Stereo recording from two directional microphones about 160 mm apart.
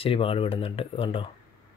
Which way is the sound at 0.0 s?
35° left (ahead or behind).